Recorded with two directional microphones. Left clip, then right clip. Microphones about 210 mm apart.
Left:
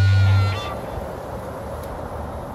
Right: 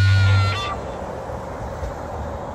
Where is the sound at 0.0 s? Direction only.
Centre (ahead or behind).